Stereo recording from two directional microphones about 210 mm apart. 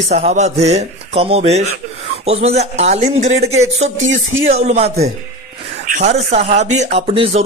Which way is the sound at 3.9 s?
65° right (ahead or behind).